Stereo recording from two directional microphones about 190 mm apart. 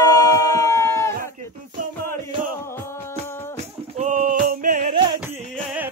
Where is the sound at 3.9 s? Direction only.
45° right (ahead or behind).